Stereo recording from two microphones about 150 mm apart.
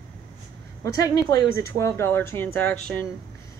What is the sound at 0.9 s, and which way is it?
Speech, 20° left (ahead or behind).